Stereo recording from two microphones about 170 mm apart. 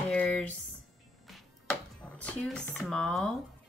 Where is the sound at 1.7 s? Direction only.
5° left (ahead or behind).